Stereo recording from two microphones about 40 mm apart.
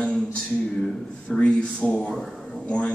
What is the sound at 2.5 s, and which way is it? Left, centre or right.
Speech, left.